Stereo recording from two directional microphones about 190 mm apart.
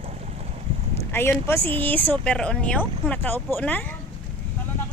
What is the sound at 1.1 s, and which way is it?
Speech, 15° left (ahead or behind).